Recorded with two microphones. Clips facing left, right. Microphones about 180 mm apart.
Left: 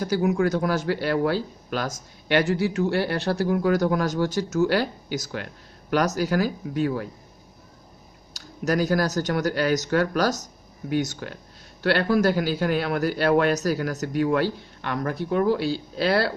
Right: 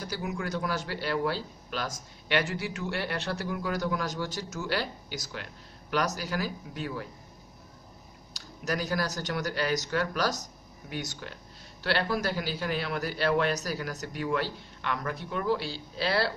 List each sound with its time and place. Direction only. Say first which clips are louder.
0.0 s speech: left 12 dB; 50° left (ahead or behind)
8.3 s speech: left 8 dB; 45° left (ahead or behind)